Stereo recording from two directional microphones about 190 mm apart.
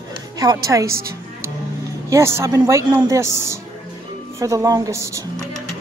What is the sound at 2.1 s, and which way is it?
Speech, 15° right (ahead or behind).